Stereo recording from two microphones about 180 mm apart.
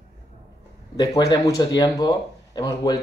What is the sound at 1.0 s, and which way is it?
Speech, 25° left (ahead or behind).